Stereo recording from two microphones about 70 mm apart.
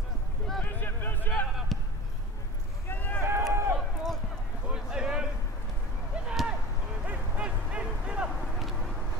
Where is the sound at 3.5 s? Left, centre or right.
Right.